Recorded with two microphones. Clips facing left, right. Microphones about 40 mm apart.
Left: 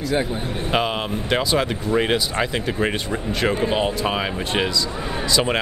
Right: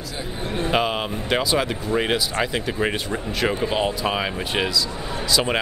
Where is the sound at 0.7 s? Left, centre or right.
Centre.